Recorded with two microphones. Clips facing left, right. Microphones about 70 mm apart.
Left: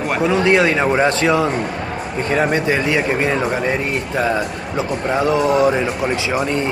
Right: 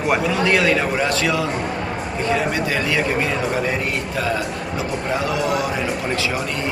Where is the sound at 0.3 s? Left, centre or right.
Left.